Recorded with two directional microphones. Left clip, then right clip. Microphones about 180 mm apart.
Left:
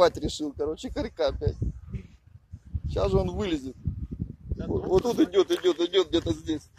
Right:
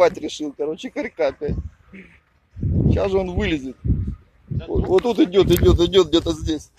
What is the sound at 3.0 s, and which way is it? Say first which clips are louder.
Speech: right 3 dB; 10° left (ahead or behind).